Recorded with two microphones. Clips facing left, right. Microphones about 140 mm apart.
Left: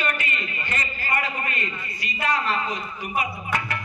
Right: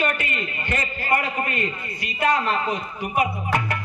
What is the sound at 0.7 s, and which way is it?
A man's voice, 60° right (ahead or behind).